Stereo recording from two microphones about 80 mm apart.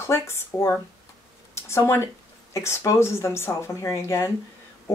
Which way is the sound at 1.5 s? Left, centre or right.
Left.